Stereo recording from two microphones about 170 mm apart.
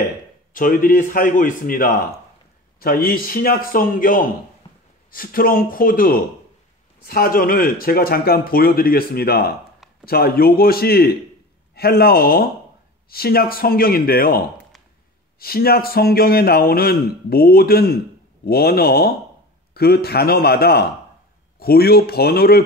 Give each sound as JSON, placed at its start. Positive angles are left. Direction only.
{"t": 0.5, "sound": "a man's voice", "side_deg": 55}
{"t": 4.6, "sound": "a sound", "side_deg": 30}
{"t": 5.1, "sound": "a man's voice", "side_deg": 55}